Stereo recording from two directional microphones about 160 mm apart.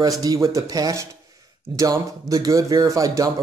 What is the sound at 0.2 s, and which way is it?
A man's voice, 20° right (ahead or behind).